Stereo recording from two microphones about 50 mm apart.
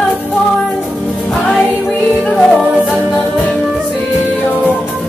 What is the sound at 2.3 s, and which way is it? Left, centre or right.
Music, centre.